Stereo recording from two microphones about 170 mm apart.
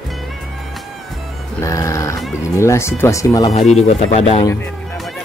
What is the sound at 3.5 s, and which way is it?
Speech, 40° left (ahead or behind).